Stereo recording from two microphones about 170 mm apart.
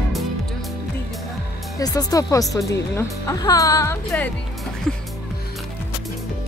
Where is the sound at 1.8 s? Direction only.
20° left (ahead or behind).